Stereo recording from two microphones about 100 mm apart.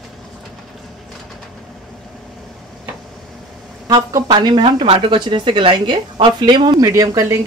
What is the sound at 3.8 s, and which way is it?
A woman's voice, 45° right (ahead or behind).